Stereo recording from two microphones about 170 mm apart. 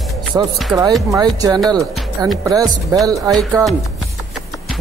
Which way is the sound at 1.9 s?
Centre (ahead or behind).